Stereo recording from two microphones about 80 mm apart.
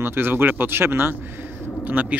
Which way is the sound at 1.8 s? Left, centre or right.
Right.